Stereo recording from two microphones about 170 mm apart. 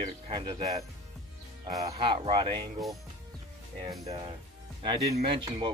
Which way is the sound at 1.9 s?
30° right (ahead or behind).